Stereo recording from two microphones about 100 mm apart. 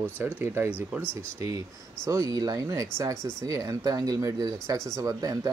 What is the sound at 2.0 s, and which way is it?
Speech, 30° right (ahead or behind).